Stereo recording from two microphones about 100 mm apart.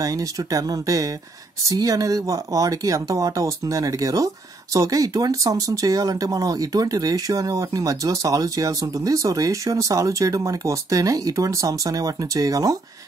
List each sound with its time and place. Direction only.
0.0 s speech: 35° right (ahead or behind)